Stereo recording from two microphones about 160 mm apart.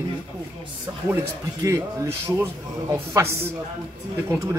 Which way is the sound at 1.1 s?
20° right (ahead or behind).